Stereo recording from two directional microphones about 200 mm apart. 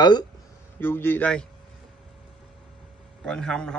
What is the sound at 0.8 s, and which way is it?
Speech, 10° left (ahead or behind).